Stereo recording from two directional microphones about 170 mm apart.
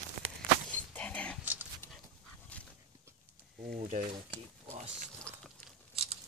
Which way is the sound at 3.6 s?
45° right (ahead or behind).